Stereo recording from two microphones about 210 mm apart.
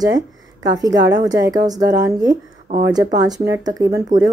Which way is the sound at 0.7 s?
15° right (ahead or behind).